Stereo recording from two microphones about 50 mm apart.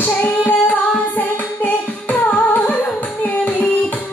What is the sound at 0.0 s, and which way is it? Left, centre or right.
Music, left.